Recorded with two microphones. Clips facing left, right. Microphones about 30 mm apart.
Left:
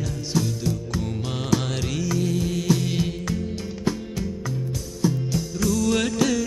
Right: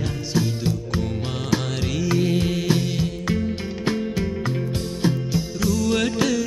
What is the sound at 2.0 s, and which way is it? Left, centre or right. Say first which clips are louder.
Mantra: right 5 dB; right.